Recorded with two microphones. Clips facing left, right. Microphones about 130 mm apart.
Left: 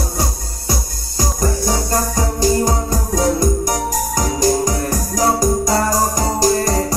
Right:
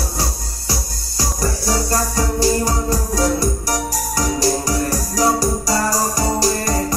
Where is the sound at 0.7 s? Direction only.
45° left (ahead or behind).